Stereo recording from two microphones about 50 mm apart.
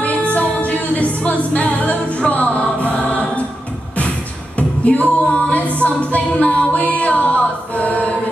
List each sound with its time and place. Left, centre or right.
0.0 s music: left
4.6 s female singing: left
5.8 s music: left